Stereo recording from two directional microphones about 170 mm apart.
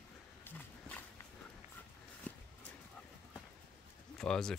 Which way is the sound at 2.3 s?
10° left (ahead or behind).